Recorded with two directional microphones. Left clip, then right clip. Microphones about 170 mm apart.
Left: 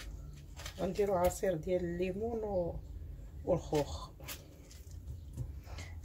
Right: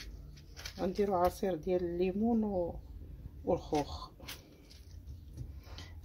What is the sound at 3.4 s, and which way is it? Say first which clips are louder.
Speech: even; 45° right (ahead or behind).